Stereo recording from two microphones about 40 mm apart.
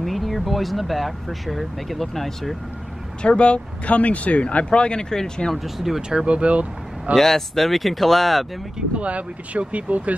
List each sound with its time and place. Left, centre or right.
0.0 s speech: centre
3.2 s speech: left
5.1 s speech: centre
5.5 s speech: centre
6.0 s speech: right
7.2 s speech: centre
8.9 s speech: right